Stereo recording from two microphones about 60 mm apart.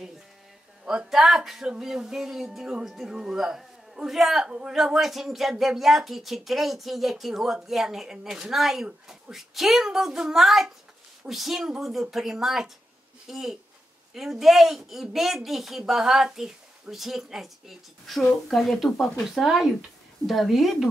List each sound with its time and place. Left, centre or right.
0.8 s speech: centre
4.5 s speech: centre
4.7 s speech: centre